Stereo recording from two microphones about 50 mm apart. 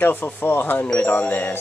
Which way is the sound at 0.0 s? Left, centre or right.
Left.